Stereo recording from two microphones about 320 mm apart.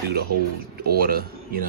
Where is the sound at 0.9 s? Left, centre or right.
Right.